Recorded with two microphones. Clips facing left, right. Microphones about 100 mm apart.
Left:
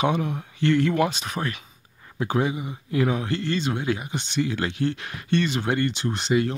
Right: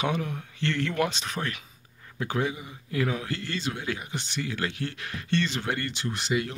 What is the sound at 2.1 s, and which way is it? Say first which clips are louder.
Speech: left 5 dB; 20° left (ahead or behind).